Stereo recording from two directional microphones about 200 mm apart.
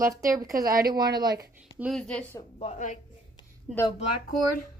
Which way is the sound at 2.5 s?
35° left (ahead or behind).